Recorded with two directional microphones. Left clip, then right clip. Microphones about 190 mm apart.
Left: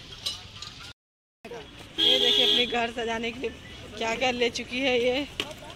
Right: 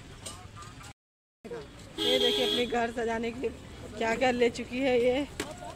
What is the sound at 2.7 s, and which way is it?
Speech, 15° right (ahead or behind).